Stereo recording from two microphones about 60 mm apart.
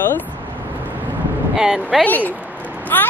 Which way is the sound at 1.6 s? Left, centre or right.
Centre.